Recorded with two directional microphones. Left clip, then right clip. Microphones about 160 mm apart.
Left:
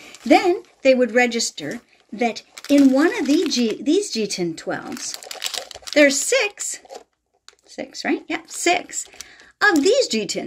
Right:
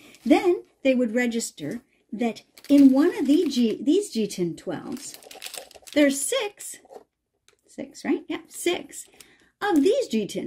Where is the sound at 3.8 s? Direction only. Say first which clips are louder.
Left 3 dB; 30° right (ahead or behind).